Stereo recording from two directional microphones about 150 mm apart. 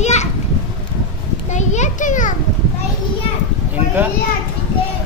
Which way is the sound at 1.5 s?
50° left (ahead or behind).